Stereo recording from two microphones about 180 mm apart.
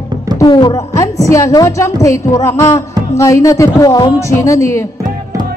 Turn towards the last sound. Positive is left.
turn(degrees=15)  # may be behind; listen again after turning